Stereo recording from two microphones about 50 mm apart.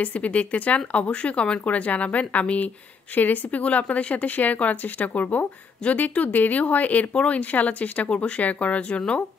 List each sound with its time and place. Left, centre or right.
0.0 s a woman's voice: left